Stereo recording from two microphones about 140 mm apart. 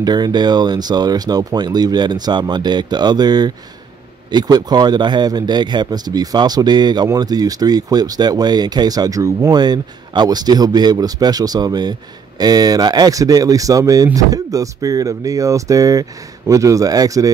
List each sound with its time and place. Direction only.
0.0 s speech: 30° right (ahead or behind)